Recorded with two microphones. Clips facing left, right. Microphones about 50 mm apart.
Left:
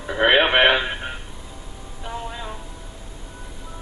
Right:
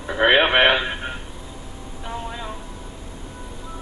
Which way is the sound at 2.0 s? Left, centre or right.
Centre.